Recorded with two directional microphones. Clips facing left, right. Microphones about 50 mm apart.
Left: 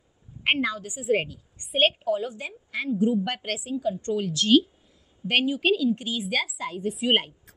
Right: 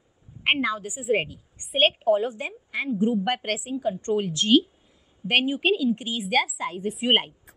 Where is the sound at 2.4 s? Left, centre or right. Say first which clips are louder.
Right 1 dB; centre.